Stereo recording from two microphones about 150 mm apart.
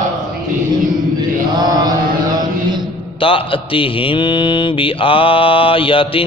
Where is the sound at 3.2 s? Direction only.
35° left (ahead or behind).